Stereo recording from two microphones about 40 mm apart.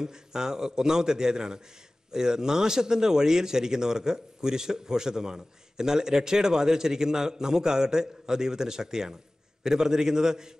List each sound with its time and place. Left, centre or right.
0.0 s speech: centre